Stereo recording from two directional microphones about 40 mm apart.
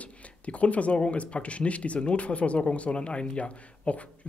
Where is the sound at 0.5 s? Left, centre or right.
Left.